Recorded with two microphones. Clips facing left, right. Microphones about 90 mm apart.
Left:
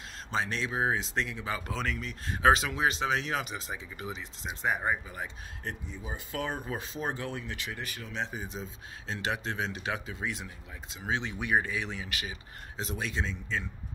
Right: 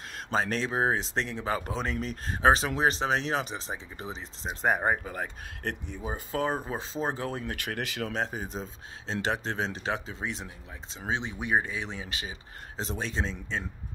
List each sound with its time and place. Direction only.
0.3 s speech: 40° right (ahead or behind)
1.7 s speech: 25° right (ahead or behind)
2.0 s speech: 35° right (ahead or behind)
5.7 s speech: 60° right (ahead or behind)
6.0 s speech: 35° right (ahead or behind)
7.4 s speech: 55° right (ahead or behind)
7.8 s speech: 90° right
8.1 s speech: 45° right (ahead or behind)